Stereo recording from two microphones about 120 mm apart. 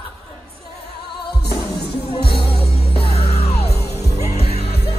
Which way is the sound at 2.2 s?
50° left (ahead or behind).